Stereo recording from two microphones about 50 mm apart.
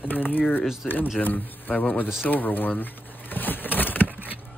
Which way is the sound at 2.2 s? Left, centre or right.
Left.